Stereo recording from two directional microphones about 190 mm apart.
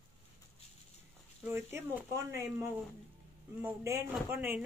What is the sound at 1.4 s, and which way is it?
Speech, 10° right (ahead or behind).